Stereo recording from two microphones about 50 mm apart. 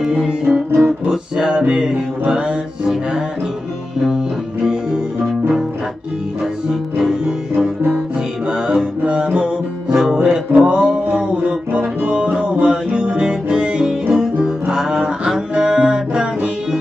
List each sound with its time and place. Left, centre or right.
0.0 s music: centre
4.6 s music: centre
6.4 s music: centre
10.5 s music: right